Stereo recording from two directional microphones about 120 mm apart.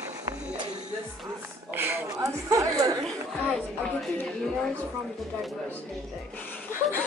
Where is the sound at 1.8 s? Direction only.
20° right (ahead or behind).